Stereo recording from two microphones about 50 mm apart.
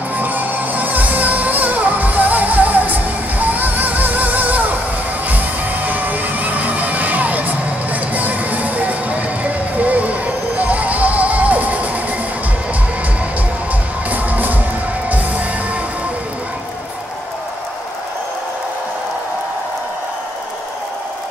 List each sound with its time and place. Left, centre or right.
0.2 s music: right
14.1 s music: right